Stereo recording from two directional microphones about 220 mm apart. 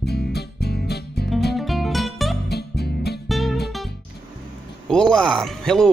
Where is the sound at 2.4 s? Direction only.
45° left (ahead or behind).